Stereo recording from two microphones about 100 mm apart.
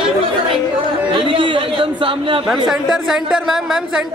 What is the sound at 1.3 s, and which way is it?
Speech, 55° right (ahead or behind).